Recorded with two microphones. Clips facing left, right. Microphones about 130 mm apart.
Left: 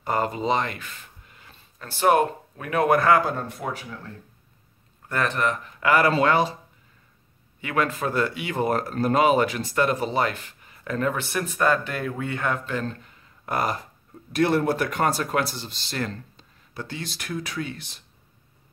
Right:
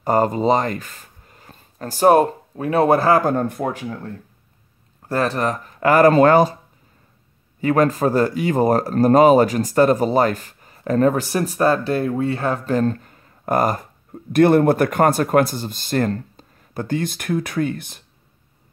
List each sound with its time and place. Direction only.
0.0 s speech: 40° right (ahead or behind)
5.0 s speech: 35° right (ahead or behind)
7.6 s speech: 40° right (ahead or behind)